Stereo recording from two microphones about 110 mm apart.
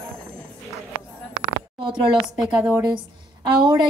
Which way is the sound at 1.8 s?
45° right (ahead or behind).